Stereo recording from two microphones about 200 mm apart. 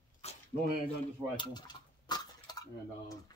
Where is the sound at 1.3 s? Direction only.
20° left (ahead or behind).